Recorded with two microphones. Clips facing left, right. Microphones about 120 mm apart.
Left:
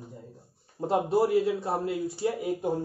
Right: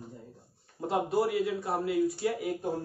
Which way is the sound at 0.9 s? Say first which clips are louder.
Left 4 dB; 30° left (ahead or behind).